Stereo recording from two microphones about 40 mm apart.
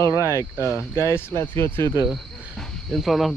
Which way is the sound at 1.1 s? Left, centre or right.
Left.